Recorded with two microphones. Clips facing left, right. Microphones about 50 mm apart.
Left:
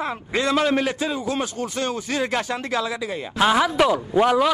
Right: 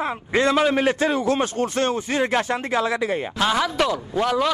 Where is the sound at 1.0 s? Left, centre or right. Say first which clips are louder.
Right 4 dB; right.